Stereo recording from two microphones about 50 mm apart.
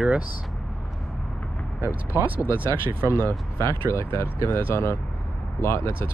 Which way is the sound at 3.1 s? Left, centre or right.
Left.